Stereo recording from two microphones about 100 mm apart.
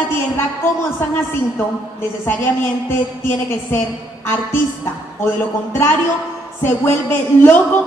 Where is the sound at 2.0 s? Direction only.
20° left (ahead or behind).